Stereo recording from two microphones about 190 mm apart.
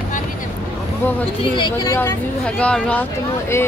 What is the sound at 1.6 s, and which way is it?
Speech, 20° left (ahead or behind).